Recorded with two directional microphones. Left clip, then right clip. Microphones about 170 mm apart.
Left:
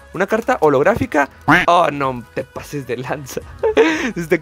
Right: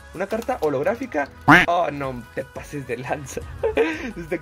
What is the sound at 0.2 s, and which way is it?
Speech, 50° left (ahead or behind).